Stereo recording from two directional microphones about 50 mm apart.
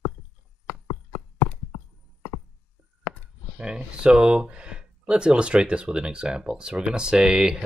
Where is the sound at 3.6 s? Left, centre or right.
Centre.